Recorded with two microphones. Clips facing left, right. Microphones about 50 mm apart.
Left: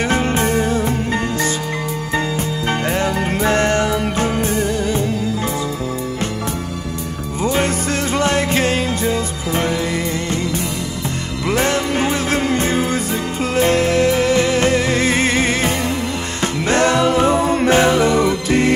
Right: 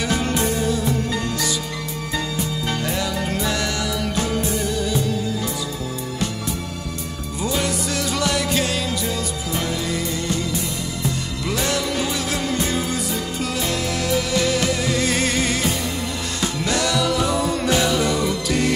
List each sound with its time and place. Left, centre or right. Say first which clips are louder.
0.1 s music: left 5 dB; left
2.9 s music: left 5 dB; left
7.4 s music: left 5 dB; left
11.4 s music: left 6 dB; left